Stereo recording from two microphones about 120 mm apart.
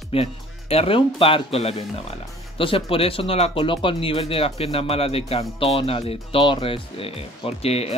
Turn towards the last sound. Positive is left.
turn(degrees=55)  # may be behind; listen again after turning